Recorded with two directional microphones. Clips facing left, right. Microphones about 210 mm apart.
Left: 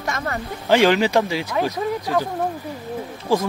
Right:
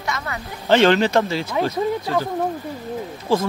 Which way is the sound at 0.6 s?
10° left (ahead or behind).